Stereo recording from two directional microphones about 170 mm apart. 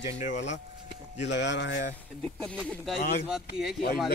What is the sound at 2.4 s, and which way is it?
Speech, 5° left (ahead or behind).